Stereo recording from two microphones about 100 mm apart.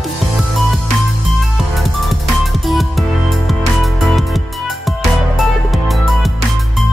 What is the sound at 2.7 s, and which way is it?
Music, centre (ahead or behind).